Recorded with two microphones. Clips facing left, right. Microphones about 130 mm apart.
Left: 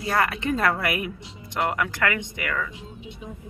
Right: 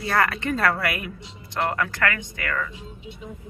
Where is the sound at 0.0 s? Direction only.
15° left (ahead or behind).